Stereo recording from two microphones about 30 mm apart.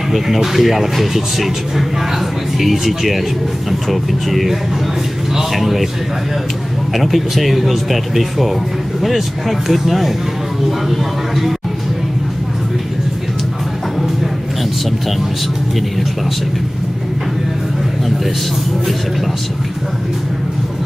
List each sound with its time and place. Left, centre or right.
0.4 s a man's voice: centre
6.9 s speech: centre